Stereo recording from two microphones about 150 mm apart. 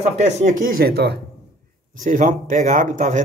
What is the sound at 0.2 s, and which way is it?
Speech, 55° right (ahead or behind).